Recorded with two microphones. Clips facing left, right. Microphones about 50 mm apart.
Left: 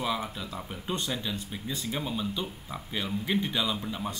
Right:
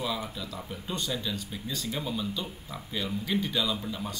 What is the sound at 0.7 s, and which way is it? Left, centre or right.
Speech, left.